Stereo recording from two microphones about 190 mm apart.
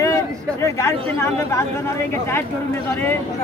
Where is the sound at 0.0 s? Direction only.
15° left (ahead or behind).